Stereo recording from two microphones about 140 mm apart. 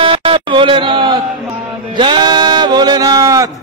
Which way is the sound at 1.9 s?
35° right (ahead or behind).